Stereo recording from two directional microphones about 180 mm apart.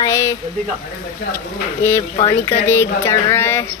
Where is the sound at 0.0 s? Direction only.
15° left (ahead or behind).